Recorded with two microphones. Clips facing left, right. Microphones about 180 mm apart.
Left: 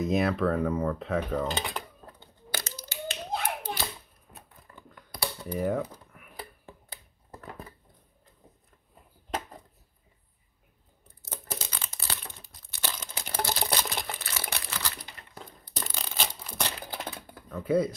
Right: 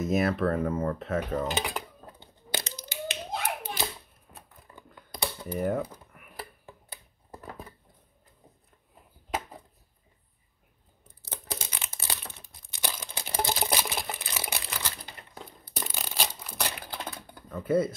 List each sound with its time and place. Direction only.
0.0 s speech: 5° right (ahead or behind)
2.5 s hands: 15° right (ahead or behind)
4.9 s computer keyboard: 20° right (ahead or behind)
5.4 s typing: centre (ahead or behind)
11.6 s crumpling: 20° right (ahead or behind)
15.7 s tearing: 10° right (ahead or behind)
16.9 s typing: centre (ahead or behind)